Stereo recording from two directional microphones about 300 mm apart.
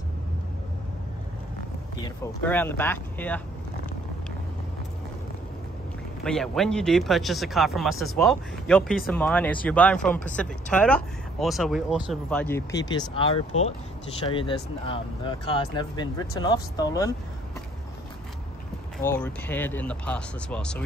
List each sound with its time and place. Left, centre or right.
2.0 s speech: centre
6.2 s speech: centre
19.1 s speech: centre